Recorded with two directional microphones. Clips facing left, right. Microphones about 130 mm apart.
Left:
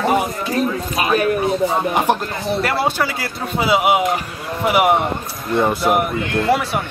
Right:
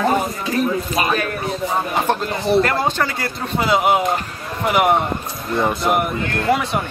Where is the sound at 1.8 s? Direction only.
15° left (ahead or behind).